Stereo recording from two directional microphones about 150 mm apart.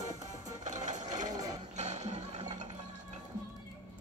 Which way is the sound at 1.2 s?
25° right (ahead or behind).